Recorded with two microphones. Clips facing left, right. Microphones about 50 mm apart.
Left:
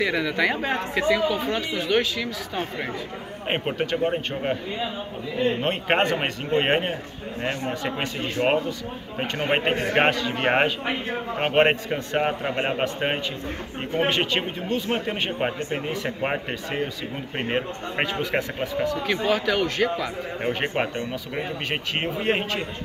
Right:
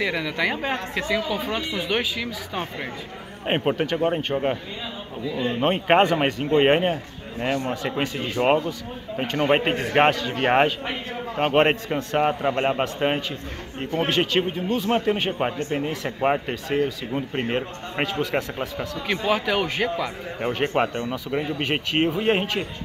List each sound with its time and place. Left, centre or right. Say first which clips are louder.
0.0 s speech: left 2 dB; centre
5.6 s speech: right 4 dB; centre
19.2 s speech: right 1 dB; centre
20.7 s speech: right 3 dB; centre
21.9 s speech: right 4 dB; centre